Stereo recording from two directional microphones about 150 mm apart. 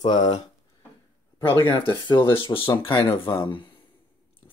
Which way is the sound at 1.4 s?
30° left (ahead or behind).